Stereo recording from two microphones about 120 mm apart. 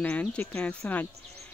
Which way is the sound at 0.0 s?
10° left (ahead or behind).